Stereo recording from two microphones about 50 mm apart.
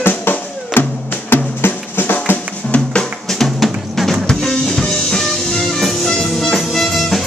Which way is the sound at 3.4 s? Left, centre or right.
Centre.